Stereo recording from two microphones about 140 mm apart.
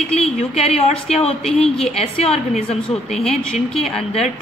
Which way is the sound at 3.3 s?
Centre (ahead or behind).